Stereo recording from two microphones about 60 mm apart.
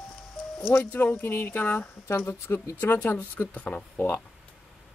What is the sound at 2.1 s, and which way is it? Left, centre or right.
Speech, left.